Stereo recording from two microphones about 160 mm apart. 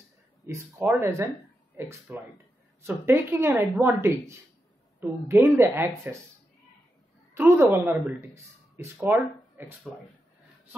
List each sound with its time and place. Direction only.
0.5 s a woman's voice: 15° right (ahead or behind)
5.3 s a woman's voice: 15° right (ahead or behind)
7.3 s a woman's voice: 15° right (ahead or behind)